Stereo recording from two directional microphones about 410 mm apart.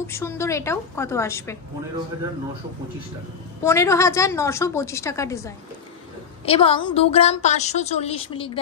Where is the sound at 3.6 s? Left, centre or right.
Centre.